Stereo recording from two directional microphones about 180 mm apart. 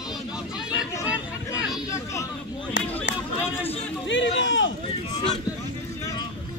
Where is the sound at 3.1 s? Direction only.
90° left.